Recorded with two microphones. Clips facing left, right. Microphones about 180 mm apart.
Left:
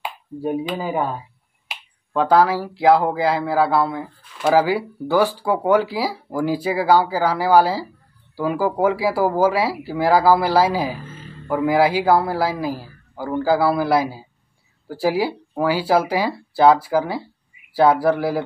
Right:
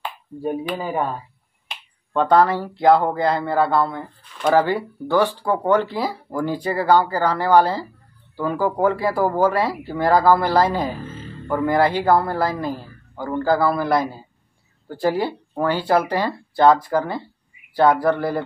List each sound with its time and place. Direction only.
0.0 s finger snapping: 10° left (ahead or behind)
0.8 s speech: 5° left (ahead or behind)